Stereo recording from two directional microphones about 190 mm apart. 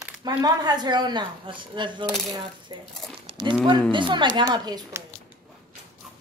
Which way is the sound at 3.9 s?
25° right (ahead or behind).